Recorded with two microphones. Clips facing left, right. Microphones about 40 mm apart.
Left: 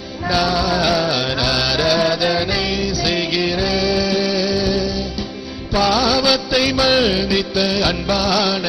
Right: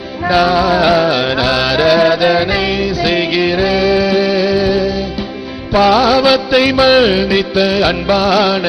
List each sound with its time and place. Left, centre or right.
0.3 s music: right